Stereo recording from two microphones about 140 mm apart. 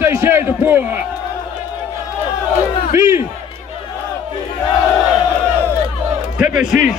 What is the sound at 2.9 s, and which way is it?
Speech, 20° right (ahead or behind).